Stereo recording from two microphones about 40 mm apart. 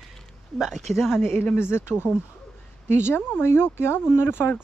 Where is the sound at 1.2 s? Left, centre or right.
Left.